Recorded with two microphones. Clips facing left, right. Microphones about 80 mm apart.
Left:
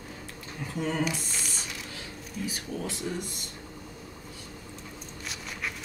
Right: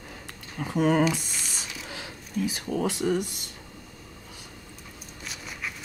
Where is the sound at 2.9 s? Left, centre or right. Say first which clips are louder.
Right 10 dB; right.